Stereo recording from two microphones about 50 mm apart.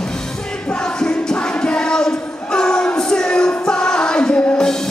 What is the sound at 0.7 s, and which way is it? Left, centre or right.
Music, centre.